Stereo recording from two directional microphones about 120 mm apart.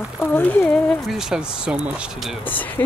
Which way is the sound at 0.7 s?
Centre (ahead or behind).